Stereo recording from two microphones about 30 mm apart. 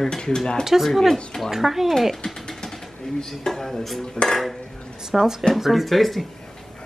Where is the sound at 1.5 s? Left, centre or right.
Centre.